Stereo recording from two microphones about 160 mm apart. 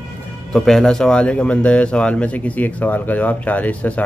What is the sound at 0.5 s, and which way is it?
Speech, 5° left (ahead or behind).